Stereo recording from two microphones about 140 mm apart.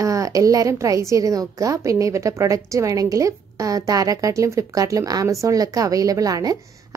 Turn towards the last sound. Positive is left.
turn(degrees=-25)  # may be behind; listen again after turning